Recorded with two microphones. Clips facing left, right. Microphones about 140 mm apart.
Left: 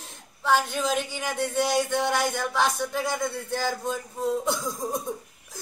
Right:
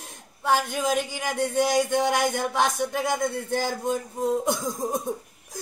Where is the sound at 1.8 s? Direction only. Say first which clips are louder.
Right 2 dB; 15° right (ahead or behind).